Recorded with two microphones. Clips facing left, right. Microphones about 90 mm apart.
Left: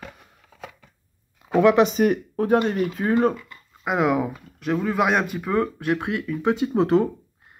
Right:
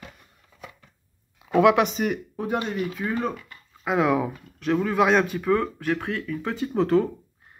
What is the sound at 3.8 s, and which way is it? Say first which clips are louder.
Speech: left 1 dB; 5° left (ahead or behind).